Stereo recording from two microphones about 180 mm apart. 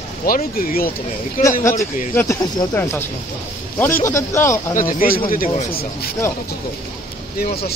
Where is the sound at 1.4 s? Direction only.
15° left (ahead or behind).